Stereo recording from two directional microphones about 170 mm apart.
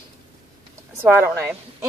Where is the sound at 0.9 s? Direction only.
15° right (ahead or behind).